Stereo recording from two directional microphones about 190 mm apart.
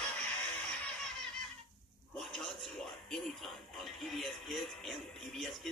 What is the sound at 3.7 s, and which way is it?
Music, centre (ahead or behind).